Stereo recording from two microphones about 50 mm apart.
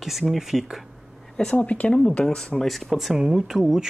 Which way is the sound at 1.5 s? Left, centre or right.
Left.